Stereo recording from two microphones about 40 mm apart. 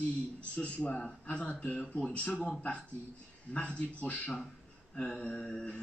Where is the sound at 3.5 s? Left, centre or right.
Left.